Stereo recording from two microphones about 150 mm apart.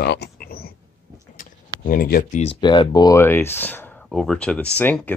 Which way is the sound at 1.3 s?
65° left (ahead or behind).